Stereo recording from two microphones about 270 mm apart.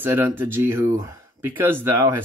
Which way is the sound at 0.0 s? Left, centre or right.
Centre.